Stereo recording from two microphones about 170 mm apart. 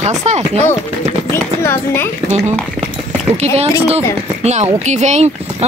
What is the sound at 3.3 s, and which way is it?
Speech, 40° right (ahead or behind).